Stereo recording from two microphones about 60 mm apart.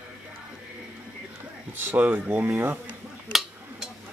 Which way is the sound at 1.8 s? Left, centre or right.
Right.